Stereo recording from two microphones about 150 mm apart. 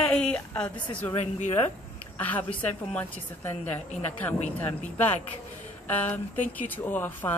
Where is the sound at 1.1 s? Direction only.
45° left (ahead or behind).